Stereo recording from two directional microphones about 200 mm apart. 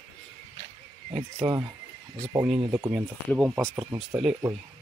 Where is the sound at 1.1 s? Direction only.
10° right (ahead or behind).